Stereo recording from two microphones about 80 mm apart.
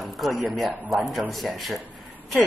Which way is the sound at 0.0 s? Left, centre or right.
Centre.